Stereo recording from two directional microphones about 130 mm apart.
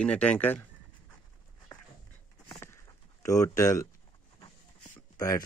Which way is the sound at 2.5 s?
25° left (ahead or behind).